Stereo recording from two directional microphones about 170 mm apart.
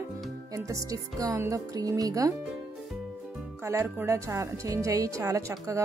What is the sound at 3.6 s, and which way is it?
A woman's voice, 15° right (ahead or behind).